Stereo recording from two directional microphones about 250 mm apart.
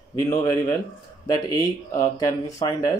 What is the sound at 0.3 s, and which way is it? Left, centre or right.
Speech, centre.